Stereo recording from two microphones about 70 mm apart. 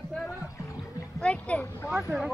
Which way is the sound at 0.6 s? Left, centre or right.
Left.